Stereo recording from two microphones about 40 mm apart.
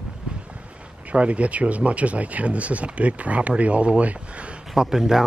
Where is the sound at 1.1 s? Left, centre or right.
Right.